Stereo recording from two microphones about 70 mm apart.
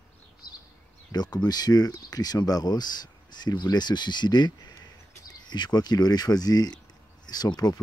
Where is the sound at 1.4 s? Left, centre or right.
Left.